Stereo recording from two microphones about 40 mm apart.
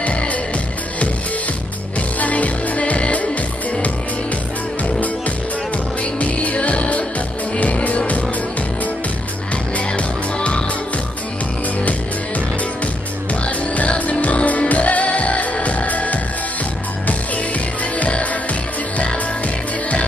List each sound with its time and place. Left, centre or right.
2.1 s music: left
6.1 s music: left
9.8 s music: left
13.7 s music: left
17.9 s music: left